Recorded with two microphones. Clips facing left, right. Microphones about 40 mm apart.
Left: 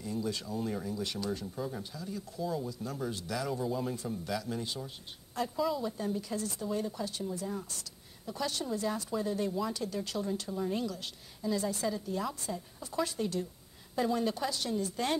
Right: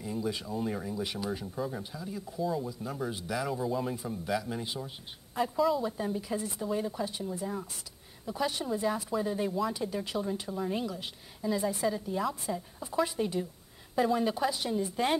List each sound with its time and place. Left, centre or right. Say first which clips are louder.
0.0 s speech: right 2 dB; centre
2.4 s speech: right 3 dB; centre
3.9 s speech: right 3 dB; centre